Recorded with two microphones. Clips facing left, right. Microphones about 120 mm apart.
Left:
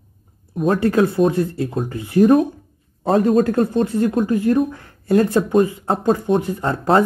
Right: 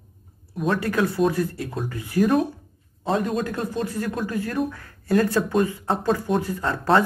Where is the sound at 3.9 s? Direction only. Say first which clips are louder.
Left 9 dB; 25° left (ahead or behind).